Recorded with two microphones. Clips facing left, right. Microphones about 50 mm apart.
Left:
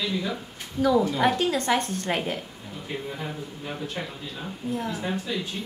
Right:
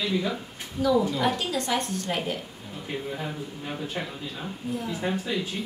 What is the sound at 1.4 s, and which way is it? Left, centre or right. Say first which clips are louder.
A woman's voice: left 4 dB; left.